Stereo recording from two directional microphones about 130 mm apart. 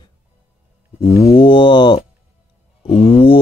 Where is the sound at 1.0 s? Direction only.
50° left (ahead or behind).